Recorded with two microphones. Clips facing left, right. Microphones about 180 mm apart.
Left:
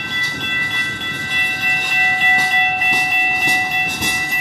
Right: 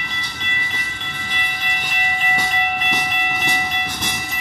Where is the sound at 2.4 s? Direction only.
5° left (ahead or behind).